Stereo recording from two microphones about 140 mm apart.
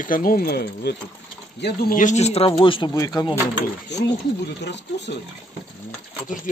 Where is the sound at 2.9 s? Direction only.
25° left (ahead or behind).